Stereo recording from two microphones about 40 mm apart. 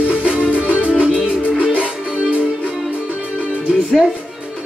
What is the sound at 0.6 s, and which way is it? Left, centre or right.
Music, right.